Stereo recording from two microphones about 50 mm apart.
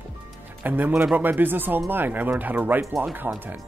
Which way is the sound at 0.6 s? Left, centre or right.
Right.